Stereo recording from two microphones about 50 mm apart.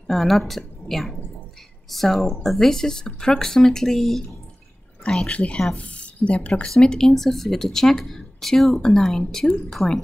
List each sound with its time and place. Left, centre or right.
0.0 s a woman's voice: centre
5.0 s speech: centre
5.9 s speech: left
6.7 s speech: centre